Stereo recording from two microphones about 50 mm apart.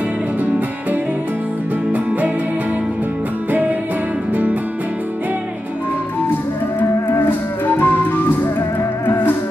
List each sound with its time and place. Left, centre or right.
4.3 s music: right
6.8 s music: left